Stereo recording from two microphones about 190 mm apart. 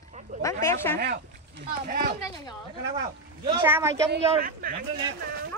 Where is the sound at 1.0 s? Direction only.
60° right (ahead or behind).